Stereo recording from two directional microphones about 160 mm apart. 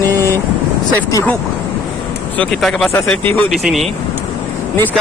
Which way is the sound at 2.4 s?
5° left (ahead or behind).